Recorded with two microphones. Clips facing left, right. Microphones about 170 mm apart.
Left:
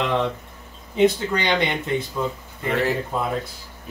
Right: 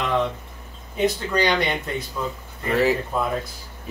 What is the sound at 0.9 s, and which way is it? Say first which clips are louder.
Speech: left 3 dB; 25° left (ahead or behind).